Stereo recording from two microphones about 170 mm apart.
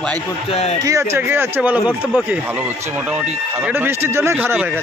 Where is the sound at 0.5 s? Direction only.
35° left (ahead or behind).